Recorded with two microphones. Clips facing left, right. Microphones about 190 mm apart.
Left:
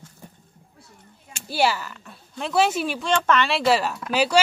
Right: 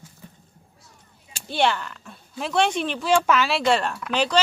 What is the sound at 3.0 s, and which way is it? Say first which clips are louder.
Speech: right 2 dB; 5° right (ahead or behind).